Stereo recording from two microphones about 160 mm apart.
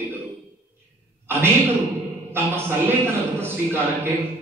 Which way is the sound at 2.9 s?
15° right (ahead or behind).